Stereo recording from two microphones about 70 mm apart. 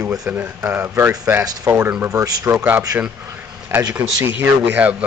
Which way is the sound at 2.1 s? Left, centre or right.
Right.